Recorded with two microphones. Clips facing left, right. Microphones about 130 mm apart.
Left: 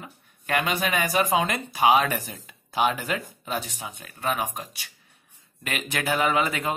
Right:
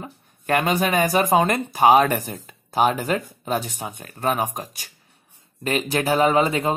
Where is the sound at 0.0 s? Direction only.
40° right (ahead or behind).